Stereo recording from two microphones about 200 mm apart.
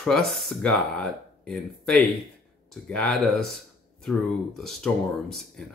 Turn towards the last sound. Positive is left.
turn(degrees=0)  # may be behind; listen again after turning